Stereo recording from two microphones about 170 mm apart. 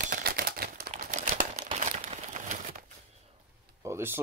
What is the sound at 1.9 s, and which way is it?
Crumpling, 45° right (ahead or behind).